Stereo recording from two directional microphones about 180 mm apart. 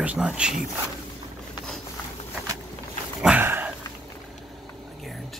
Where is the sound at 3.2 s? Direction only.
10° right (ahead or behind).